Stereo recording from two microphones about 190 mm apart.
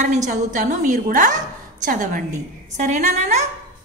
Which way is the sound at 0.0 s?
40° right (ahead or behind).